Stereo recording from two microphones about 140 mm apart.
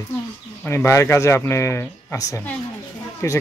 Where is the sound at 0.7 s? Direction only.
20° left (ahead or behind).